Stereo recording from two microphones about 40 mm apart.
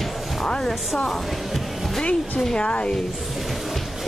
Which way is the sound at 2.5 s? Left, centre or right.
Left.